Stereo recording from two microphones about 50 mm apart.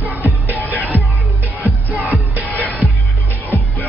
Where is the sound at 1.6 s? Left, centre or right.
Right.